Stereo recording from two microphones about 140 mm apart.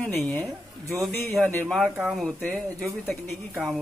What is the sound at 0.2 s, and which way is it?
A man's voice, 5° left (ahead or behind).